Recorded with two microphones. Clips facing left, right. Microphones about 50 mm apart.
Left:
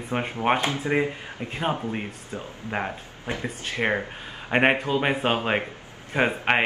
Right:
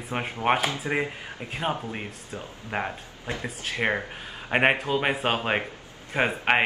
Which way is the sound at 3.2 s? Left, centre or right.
Left.